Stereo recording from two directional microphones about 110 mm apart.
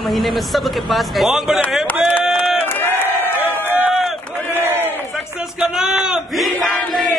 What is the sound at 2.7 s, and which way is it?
Crowd, 20° left (ahead or behind).